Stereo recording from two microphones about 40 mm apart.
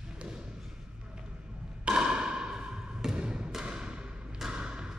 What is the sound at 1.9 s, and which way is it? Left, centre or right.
Thump, right.